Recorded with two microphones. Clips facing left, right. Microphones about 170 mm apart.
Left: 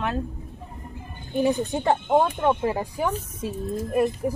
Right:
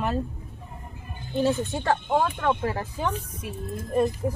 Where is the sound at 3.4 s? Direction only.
30° left (ahead or behind).